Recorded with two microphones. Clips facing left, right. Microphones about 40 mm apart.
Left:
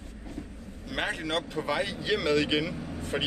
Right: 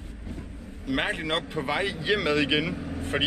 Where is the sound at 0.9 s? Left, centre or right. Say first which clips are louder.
Right 3 dB; right.